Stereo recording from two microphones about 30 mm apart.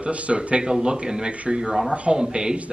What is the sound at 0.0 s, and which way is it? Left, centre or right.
Speech, right.